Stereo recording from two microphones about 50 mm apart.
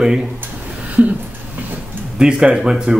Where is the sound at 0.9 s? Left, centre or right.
Right.